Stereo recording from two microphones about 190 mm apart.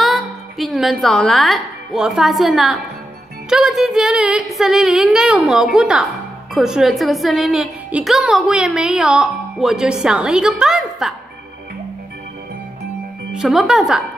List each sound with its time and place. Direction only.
0.0 s a woman's voice: centre (ahead or behind)
13.3 s a woman's voice: centre (ahead or behind)